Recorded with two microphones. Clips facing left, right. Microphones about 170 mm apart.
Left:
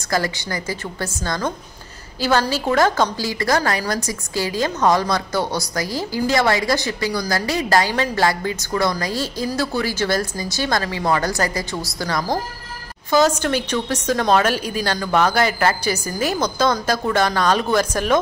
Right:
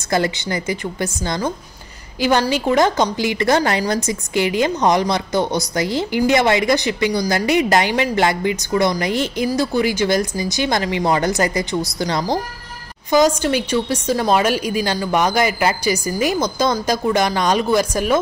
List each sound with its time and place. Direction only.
0.1 s a woman's voice: 20° right (ahead or behind)